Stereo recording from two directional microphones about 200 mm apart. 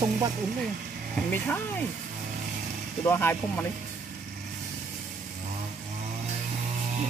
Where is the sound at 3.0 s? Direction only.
10° left (ahead or behind).